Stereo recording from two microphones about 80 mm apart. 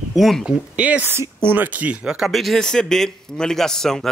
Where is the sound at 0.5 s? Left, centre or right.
Centre.